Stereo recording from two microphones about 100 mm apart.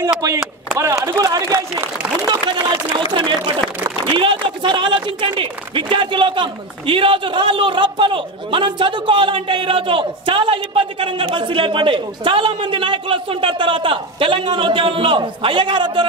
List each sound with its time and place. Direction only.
0.2 s speech: 30° right (ahead or behind)
3.1 s speech: 55° right (ahead or behind)